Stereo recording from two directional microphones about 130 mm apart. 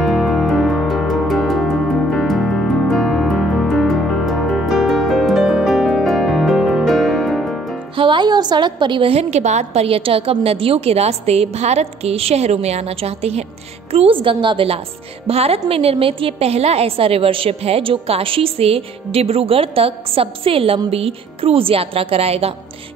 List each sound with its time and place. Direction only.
0.0 s music: centre (ahead or behind)
7.9 s a woman's voice: 40° right (ahead or behind)